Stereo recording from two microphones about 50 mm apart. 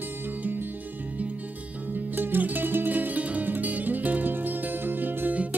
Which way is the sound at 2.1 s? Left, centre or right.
Right.